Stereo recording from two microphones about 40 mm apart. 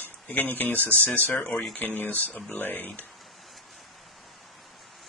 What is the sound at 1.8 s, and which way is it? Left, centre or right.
Speech, left.